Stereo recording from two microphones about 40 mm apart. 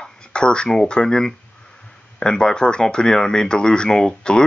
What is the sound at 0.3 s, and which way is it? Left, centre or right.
Speech, left.